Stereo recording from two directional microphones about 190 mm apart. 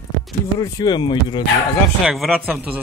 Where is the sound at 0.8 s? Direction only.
25° left (ahead or behind).